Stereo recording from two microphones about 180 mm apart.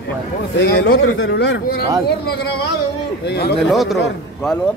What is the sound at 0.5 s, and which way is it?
Speech, 65° left (ahead or behind).